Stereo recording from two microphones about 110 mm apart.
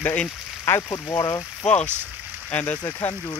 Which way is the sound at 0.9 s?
35° left (ahead or behind).